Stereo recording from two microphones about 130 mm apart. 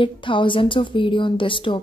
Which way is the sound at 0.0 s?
40° left (ahead or behind).